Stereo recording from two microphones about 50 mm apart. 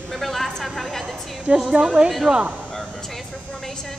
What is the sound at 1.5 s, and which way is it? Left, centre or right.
Speech, centre.